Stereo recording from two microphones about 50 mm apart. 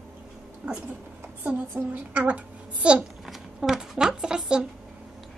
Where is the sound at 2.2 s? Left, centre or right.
Right.